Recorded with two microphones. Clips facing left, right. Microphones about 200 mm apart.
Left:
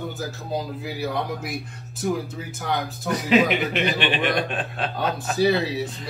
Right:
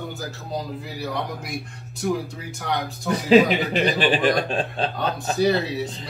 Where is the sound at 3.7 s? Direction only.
35° right (ahead or behind).